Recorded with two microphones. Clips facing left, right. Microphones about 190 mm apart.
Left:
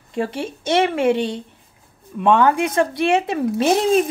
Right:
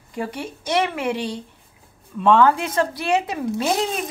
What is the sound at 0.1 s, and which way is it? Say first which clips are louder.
Speech: left 5 dB; 25° left (ahead or behind).